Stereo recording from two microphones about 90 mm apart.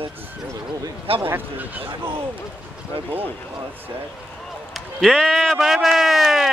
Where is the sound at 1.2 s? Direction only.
25° right (ahead or behind).